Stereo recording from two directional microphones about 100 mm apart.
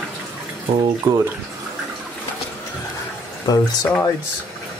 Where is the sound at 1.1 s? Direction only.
25° right (ahead or behind).